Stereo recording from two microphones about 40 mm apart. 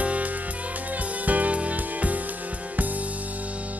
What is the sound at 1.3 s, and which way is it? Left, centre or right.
Music, right.